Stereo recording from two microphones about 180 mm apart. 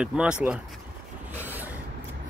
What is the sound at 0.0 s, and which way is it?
Speech, 5° right (ahead or behind).